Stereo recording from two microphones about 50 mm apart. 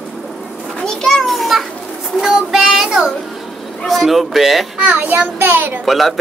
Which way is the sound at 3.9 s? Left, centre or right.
Centre.